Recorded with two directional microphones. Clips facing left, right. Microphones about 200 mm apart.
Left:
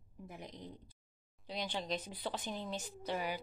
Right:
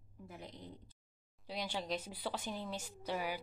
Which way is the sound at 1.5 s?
10° right (ahead or behind).